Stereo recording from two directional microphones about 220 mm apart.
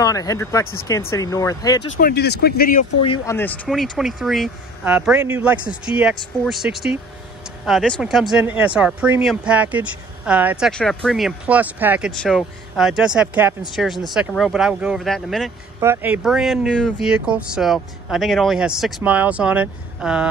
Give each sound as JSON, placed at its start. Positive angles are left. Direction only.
{"t": 0.0, "sound": "speech", "side_deg": 15}
{"t": 2.0, "sound": "speech", "side_deg": 45}
{"t": 3.3, "sound": "speech", "side_deg": 10}
{"t": 15.8, "sound": "speech", "side_deg": -10}